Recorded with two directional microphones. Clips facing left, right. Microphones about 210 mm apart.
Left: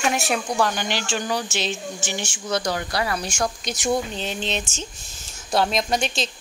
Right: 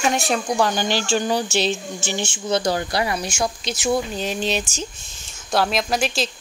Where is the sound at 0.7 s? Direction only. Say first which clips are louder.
Right 5 dB; 30° right (ahead or behind).